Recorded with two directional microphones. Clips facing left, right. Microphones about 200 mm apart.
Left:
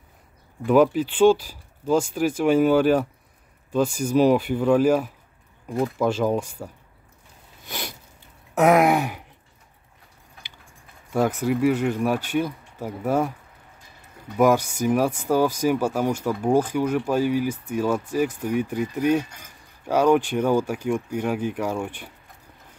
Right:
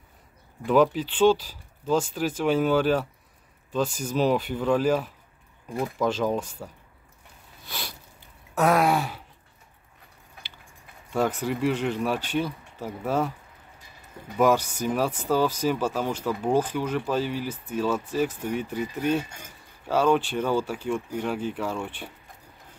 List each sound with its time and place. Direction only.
0.7 s speech: 10° left (ahead or behind)
7.6 s a sound: 20° left (ahead or behind)
8.5 s speech: 15° left (ahead or behind)
11.1 s speech: 10° left (ahead or behind)
14.3 s speech: 10° left (ahead or behind)